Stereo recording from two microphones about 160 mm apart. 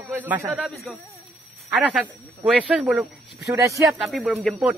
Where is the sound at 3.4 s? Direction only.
20° right (ahead or behind).